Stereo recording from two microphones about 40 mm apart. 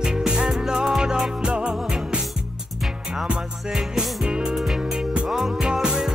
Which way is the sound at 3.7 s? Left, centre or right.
Centre.